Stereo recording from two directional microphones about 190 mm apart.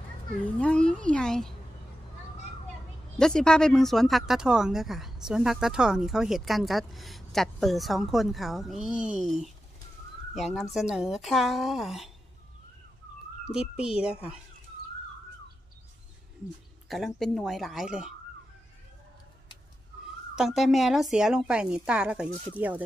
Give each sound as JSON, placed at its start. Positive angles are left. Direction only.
{"t": 0.6, "sound": "speech", "side_deg": 5}
{"t": 3.2, "sound": "speech", "side_deg": 5}
{"t": 10.3, "sound": "speech", "side_deg": 0}
{"t": 13.5, "sound": "speech", "side_deg": -5}
{"t": 16.9, "sound": "speech", "side_deg": 0}
{"t": 20.3, "sound": "speech", "side_deg": 0}